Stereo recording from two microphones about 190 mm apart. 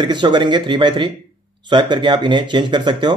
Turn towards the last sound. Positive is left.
turn(degrees=-25)  # may be behind; listen again after turning